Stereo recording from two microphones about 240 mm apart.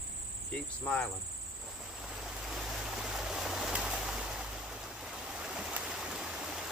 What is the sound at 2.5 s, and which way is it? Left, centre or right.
Stream, centre.